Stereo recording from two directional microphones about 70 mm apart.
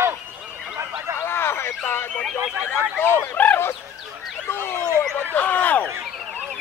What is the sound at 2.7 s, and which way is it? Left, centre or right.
Speech, left.